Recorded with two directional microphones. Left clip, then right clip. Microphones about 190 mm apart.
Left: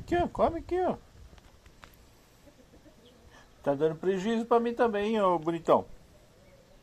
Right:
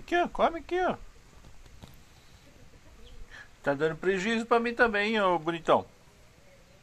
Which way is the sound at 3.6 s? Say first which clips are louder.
Even; 10° left (ahead or behind).